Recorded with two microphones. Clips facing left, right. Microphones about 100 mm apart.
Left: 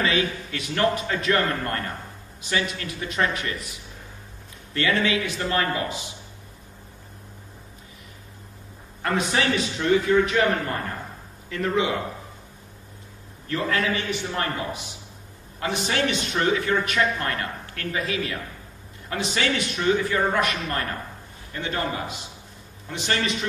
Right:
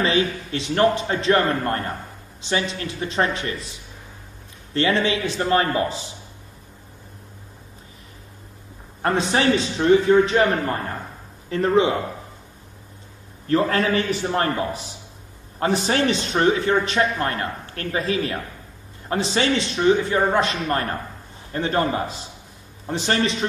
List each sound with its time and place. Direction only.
0.0 s a man's voice: 30° right (ahead or behind)
4.7 s a man's voice: 30° right (ahead or behind)
9.0 s a man's voice: 30° right (ahead or behind)
13.5 s a man's voice: 35° right (ahead or behind)